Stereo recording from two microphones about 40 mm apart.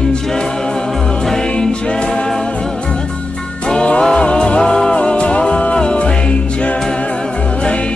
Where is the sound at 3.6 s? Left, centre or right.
Left.